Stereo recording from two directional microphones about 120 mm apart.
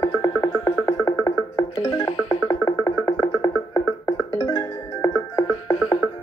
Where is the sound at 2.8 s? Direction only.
30° left (ahead or behind).